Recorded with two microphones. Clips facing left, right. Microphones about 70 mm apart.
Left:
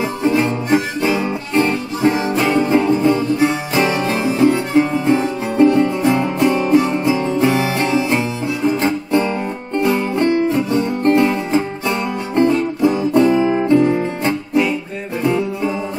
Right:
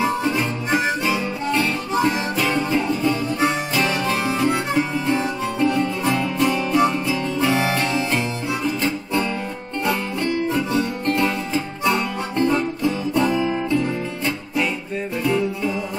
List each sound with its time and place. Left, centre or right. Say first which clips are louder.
1.0 s music: left 4 dB; left